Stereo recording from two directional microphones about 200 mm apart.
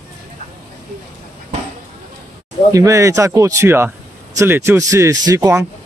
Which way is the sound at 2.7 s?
15° right (ahead or behind).